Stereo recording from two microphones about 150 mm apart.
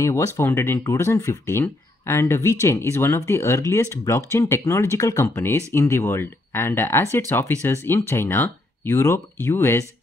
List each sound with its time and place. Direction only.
0.0 s speech: 20° left (ahead or behind)